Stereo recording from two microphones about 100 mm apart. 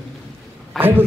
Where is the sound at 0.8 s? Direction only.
20° right (ahead or behind).